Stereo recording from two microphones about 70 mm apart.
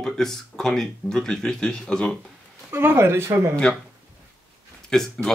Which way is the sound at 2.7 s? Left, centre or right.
Right.